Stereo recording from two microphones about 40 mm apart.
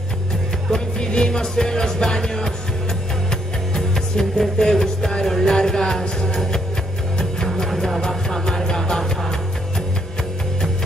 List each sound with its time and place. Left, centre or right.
0.7 s music: left